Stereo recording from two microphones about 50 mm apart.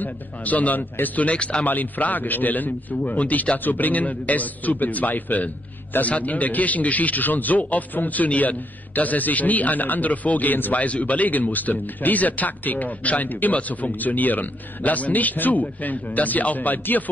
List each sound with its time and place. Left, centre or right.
0.0 s a man's voice: left